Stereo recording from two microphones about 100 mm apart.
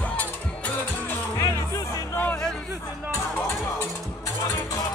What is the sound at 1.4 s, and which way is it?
Music, 35° left (ahead or behind).